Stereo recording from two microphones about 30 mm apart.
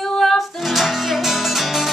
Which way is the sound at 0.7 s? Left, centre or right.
Centre.